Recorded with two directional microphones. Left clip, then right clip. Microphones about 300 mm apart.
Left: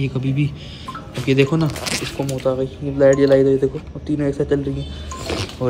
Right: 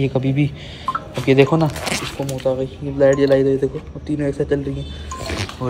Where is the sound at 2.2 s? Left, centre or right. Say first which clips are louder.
Even; centre.